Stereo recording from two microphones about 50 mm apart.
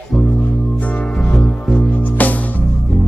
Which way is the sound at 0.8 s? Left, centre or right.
Left.